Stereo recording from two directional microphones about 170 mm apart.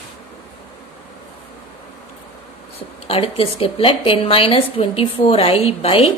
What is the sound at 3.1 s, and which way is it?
A woman's voice, 35° left (ahead or behind).